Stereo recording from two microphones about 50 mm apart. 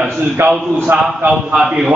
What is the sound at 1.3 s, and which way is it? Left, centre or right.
Speech, centre.